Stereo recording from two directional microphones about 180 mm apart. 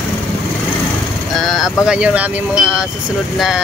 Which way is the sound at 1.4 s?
Centre (ahead or behind).